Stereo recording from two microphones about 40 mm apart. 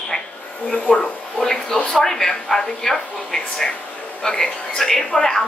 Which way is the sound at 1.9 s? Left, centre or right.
Centre.